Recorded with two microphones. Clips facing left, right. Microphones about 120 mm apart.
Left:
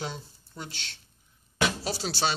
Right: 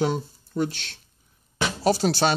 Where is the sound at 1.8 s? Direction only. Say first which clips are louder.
Right 9 dB; 50° right (ahead or behind).